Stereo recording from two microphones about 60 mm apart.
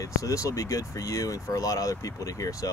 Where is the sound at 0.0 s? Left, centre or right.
Left.